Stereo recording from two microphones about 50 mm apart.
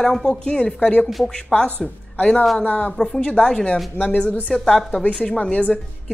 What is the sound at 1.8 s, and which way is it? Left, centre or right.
Speech, centre.